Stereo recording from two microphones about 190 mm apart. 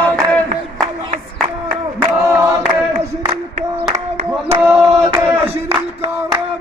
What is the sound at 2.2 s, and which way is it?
Choir, 15° right (ahead or behind).